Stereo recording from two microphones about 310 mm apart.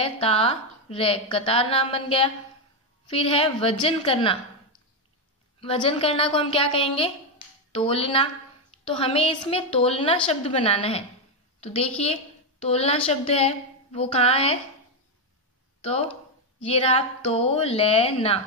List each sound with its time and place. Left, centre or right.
0.0 s a woman's voice: centre
5.6 s a woman's voice: centre
16.6 s a woman's voice: centre